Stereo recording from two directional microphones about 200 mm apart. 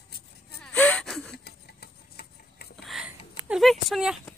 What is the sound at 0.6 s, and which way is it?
Gasp, 5° left (ahead or behind).